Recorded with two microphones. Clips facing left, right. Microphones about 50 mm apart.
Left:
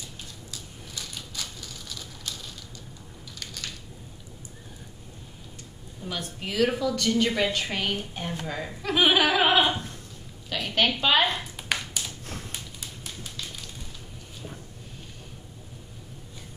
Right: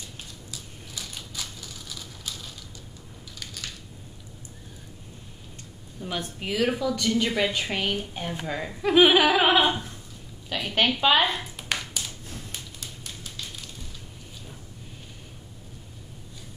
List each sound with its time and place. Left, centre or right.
0.5 s crushing: centre
3.3 s crushing: centre
6.0 s a woman's voice: centre
6.5 s a woman's voice: centre
9.6 s a woman's voice: centre
11.7 s tap: centre
12.8 s a sound: centre